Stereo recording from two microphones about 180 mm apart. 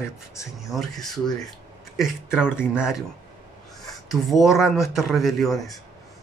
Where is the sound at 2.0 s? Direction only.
5° right (ahead or behind).